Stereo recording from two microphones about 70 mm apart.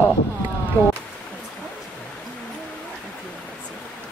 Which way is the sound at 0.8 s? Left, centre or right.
Left.